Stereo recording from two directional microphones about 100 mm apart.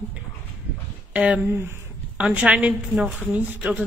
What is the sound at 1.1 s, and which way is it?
Speech, 15° right (ahead or behind).